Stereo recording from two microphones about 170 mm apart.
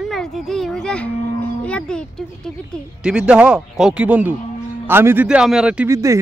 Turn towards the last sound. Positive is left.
turn(degrees=-15)  # may be behind; listen again after turning